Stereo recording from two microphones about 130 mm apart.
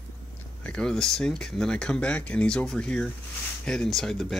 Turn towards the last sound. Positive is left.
turn(degrees=5)  # may be behind; listen again after turning